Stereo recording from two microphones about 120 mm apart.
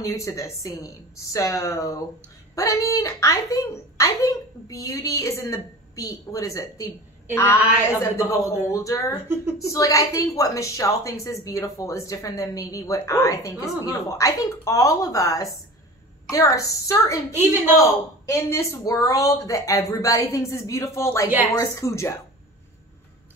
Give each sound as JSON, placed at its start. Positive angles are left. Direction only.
{"t": 0.0, "sound": "a woman's voice", "side_deg": 25}
{"t": 8.0, "sound": "a woman's voice", "side_deg": 20}
{"t": 9.1, "sound": "a woman's voice", "side_deg": -20}
{"t": 9.7, "sound": "a woman's voice", "side_deg": 25}
{"t": 17.4, "sound": "a woman's voice", "side_deg": -20}
{"t": 18.3, "sound": "a woman's voice", "side_deg": 25}